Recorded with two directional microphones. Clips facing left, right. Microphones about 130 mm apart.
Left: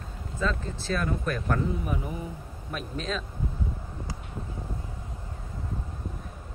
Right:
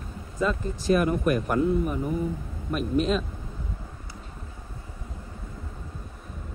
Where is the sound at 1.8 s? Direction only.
Centre (ahead or behind).